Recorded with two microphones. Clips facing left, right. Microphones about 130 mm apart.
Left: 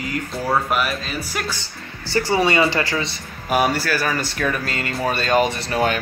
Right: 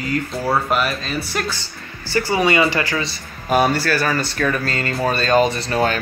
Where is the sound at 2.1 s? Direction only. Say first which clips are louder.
Right 1 dB; 30° left (ahead or behind).